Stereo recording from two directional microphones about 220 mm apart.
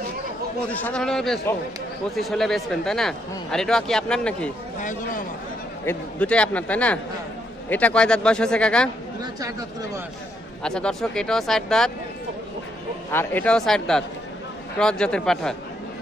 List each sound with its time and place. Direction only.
0.7 s speech: 5° left (ahead or behind)
4.7 s speech: 35° left (ahead or behind)
5.9 s speech: 5° left (ahead or behind)
9.2 s speech: 15° right (ahead or behind)
10.6 s speech: 5° left (ahead or behind)
13.1 s speech: 10° left (ahead or behind)